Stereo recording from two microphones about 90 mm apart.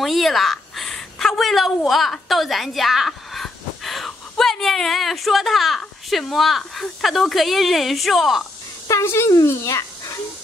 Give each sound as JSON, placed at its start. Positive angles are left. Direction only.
{"t": 0.0, "sound": "a sound", "side_deg": 0}
{"t": 1.9, "sound": "speech", "side_deg": 0}
{"t": 8.8, "sound": "speech", "side_deg": 30}